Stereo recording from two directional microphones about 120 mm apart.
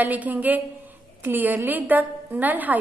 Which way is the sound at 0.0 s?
15° right (ahead or behind).